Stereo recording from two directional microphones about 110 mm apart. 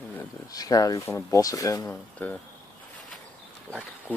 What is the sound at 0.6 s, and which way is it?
Speech, 35° left (ahead or behind).